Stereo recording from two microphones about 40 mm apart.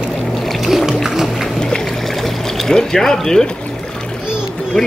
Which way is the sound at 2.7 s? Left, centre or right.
Centre.